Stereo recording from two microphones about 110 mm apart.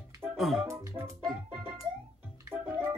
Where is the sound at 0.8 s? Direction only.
25° right (ahead or behind).